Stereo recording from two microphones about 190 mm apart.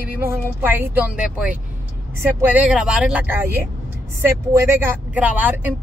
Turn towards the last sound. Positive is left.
turn(degrees=-10)  # may be behind; listen again after turning